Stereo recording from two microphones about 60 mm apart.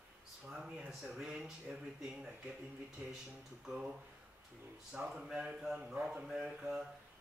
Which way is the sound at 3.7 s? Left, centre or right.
Centre.